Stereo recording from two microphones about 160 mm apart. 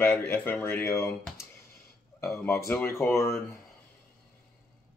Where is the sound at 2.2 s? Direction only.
15° left (ahead or behind).